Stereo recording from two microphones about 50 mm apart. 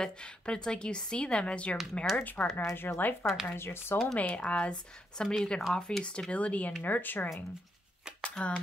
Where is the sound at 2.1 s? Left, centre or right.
Left.